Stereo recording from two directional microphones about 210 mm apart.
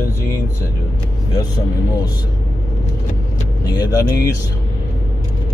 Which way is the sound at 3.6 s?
15° left (ahead or behind).